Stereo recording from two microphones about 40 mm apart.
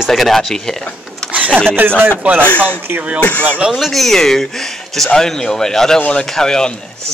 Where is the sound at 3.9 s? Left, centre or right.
Centre.